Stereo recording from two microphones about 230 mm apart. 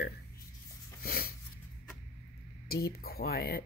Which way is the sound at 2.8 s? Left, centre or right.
Left.